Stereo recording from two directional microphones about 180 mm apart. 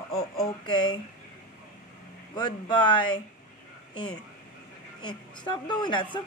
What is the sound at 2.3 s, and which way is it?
Speech, 25° left (ahead or behind).